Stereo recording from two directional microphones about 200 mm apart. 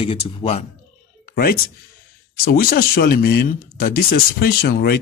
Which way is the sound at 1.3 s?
50° left (ahead or behind).